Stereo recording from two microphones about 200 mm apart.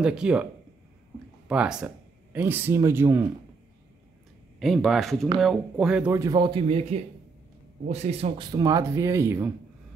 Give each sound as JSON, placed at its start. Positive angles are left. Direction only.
{"t": 0.0, "sound": "speech", "side_deg": -5}
{"t": 1.5, "sound": "speech", "side_deg": -5}
{"t": 4.6, "sound": "speech", "side_deg": 0}
{"t": 6.1, "sound": "a man's voice", "side_deg": -20}